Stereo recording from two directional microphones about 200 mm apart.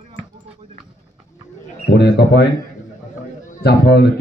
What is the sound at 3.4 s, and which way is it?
Speech, 55° left (ahead or behind).